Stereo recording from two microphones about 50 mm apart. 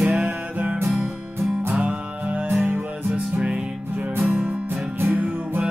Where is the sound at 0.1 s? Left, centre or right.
Right.